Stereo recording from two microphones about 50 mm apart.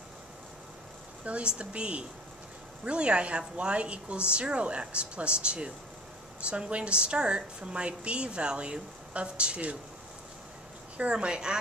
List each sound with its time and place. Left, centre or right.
1.2 s a woman's voice: right
11.0 s a woman's voice: centre